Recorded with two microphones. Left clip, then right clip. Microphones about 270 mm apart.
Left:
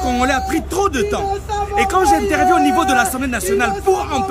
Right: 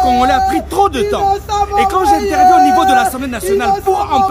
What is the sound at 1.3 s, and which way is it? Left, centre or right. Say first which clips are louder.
Speech: right 7 dB; centre.